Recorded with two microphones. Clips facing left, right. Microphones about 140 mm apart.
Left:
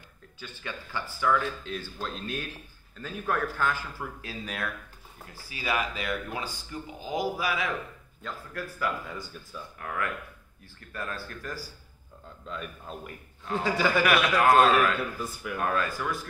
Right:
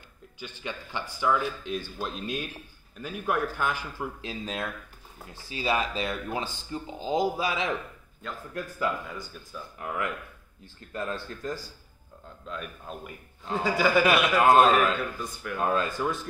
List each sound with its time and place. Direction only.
0.4 s speech: 20° right (ahead or behind)
9.0 s speech: centre (ahead or behind)
9.8 s speech: 20° right (ahead or behind)
12.4 s speech: centre (ahead or behind)
14.0 s speech: 25° right (ahead or behind)
15.0 s speech: 5° left (ahead or behind)
15.5 s speech: 25° right (ahead or behind)